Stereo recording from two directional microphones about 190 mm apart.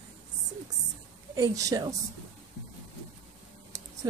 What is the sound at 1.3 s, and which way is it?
Speech, 20° right (ahead or behind).